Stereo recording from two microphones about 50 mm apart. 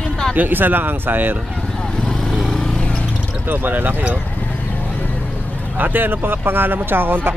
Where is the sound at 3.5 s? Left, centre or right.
Right.